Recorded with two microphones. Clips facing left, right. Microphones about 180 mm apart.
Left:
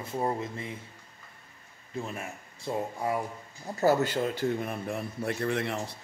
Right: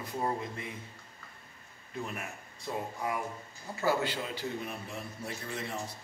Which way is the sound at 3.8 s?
45° left (ahead or behind).